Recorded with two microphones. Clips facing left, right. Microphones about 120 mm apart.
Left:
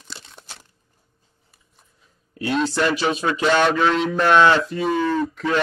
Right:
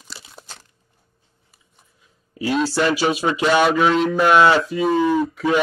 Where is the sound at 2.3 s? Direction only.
5° right (ahead or behind).